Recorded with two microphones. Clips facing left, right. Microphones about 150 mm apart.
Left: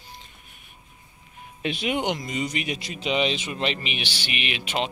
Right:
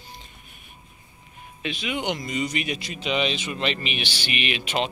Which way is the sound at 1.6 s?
55° left (ahead or behind).